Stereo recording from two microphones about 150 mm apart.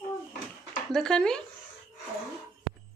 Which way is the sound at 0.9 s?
5° left (ahead or behind).